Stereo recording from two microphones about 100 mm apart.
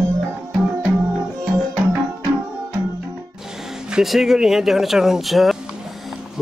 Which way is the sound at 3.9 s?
5° right (ahead or behind).